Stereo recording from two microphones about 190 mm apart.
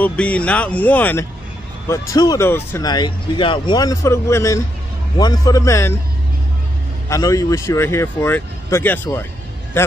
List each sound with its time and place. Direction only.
0.0 s speech: 5° left (ahead or behind)
7.1 s a man's voice: 20° left (ahead or behind)